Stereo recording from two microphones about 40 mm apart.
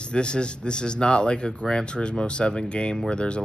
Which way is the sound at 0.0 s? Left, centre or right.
Left.